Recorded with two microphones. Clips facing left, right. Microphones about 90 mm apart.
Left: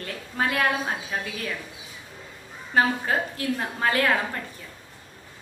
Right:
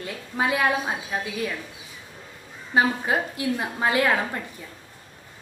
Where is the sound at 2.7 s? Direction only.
15° right (ahead or behind).